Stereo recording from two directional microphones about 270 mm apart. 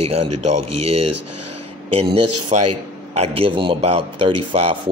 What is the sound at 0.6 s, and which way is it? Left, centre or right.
Speech, right.